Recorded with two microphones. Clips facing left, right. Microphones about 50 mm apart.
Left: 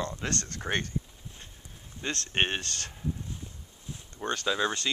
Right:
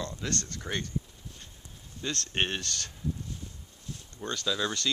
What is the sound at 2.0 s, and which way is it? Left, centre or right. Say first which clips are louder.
Speech: left 2 dB; left.